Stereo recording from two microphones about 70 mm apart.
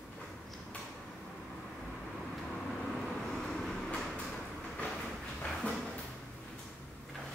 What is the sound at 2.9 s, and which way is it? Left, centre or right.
Vehicle, centre.